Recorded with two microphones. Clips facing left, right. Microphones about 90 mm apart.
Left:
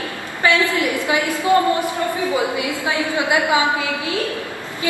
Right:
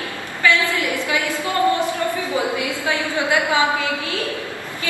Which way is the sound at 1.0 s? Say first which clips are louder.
Left 3 dB; 20° left (ahead or behind).